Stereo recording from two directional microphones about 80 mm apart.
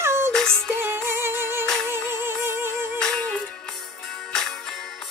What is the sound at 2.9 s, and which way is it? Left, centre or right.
Music, centre.